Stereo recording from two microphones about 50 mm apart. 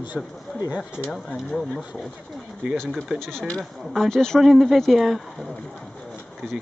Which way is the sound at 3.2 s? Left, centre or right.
Centre.